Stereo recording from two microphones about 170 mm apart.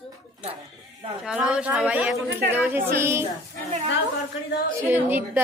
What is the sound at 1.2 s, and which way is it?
A man's voice, 5° right (ahead or behind).